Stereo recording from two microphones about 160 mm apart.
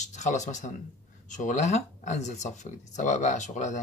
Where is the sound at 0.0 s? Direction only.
50° left (ahead or behind).